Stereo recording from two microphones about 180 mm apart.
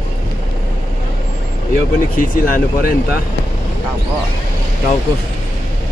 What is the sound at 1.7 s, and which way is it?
Speech, 55° left (ahead or behind).